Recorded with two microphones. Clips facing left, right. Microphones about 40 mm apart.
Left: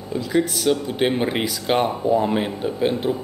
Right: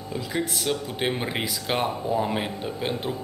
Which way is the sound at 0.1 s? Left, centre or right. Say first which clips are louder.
Left 7 dB; centre.